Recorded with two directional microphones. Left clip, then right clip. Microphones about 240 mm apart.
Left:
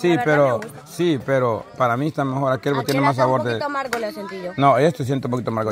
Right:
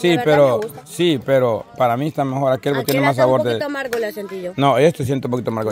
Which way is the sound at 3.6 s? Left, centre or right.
Right.